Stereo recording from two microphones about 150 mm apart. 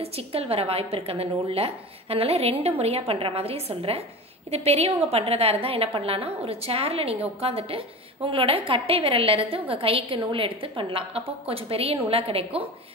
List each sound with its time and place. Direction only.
0.0 s a woman's voice: 40° right (ahead or behind)